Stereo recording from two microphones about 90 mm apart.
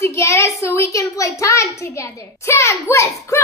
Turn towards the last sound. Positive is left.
turn(degrees=30)  # may be behind; listen again after turning